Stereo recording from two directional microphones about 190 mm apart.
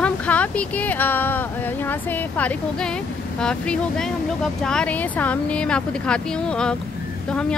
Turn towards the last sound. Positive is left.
turn(degrees=5)  # may be behind; listen again after turning